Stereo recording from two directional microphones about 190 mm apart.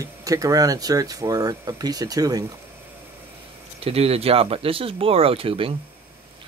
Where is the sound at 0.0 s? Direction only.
20° right (ahead or behind).